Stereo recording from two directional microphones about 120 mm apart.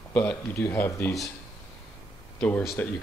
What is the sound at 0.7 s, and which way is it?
Speech, 20° left (ahead or behind).